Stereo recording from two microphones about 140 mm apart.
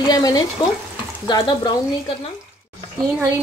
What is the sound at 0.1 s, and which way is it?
Stir, 25° left (ahead or behind).